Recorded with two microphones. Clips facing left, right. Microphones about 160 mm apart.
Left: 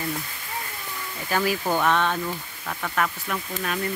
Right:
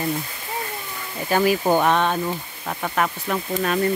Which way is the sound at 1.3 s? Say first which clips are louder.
Right 6 dB; 20° right (ahead or behind).